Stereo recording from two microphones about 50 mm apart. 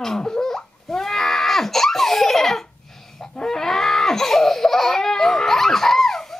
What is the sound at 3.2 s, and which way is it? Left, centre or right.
Laughter, centre.